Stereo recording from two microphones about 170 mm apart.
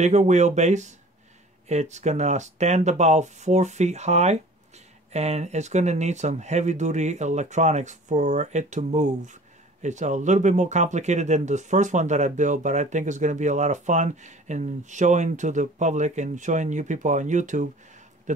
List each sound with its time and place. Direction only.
0.0 s speech: 45° right (ahead or behind)